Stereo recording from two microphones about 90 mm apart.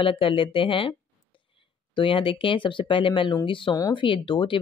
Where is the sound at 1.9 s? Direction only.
80° left.